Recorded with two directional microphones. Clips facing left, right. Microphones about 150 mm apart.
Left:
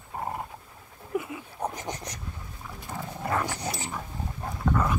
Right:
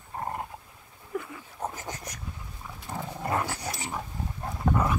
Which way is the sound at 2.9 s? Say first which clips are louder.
Right 1 dB; centre (ahead or behind).